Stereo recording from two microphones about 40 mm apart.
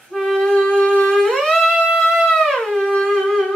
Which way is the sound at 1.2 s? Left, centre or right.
Centre.